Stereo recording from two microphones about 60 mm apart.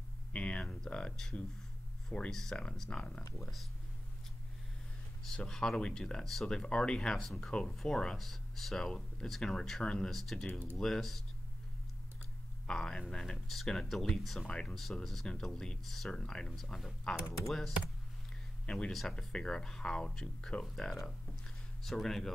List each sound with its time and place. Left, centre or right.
0.3 s speech: left
3.3 s speech: centre
5.4 s speech: centre
12.6 s speech: centre
14.5 s speech: centre
14.8 s speech: centre
16.1 s speech: centre
18.9 s speech: centre